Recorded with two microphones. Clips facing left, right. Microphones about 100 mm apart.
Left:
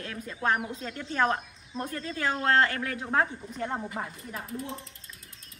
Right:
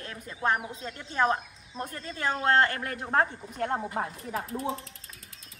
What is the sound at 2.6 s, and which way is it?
Speech, 40° right (ahead or behind).